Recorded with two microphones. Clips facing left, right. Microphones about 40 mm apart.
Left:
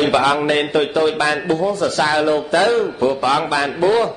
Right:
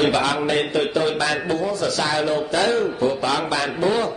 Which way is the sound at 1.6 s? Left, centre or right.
Left.